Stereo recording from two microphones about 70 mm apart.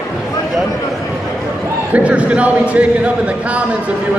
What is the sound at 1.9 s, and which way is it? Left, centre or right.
Speech, centre.